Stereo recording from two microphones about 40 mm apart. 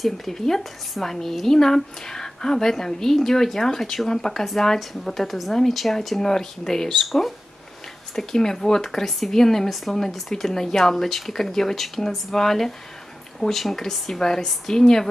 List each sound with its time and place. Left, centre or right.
0.0 s a woman's voice: centre
7.1 s a woman's voice: centre